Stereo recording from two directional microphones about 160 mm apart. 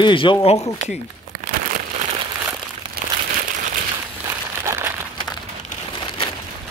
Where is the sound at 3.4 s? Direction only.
55° right (ahead or behind).